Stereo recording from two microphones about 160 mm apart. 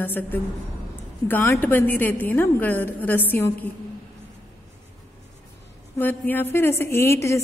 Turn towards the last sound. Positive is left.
turn(degrees=15)  # may be behind; listen again after turning